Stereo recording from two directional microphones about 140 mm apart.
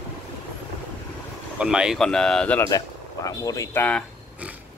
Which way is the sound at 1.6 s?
5° right (ahead or behind).